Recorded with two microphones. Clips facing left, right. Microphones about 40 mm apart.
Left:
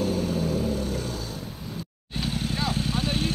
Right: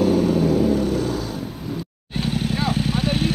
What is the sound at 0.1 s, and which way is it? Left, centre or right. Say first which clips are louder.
Vehicle: right 9 dB; right.